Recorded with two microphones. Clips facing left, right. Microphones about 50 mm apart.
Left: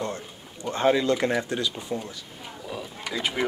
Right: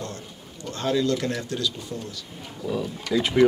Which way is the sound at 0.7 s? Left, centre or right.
Left.